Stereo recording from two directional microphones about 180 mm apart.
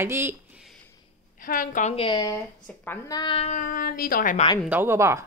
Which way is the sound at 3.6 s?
50° left (ahead or behind).